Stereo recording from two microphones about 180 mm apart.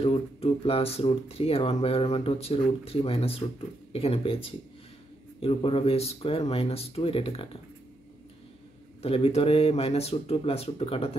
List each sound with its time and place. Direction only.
0.0 s speech: 35° left (ahead or behind)
9.0 s speech: 35° left (ahead or behind)